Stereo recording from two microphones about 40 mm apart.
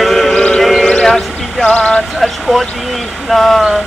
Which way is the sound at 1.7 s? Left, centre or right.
Left.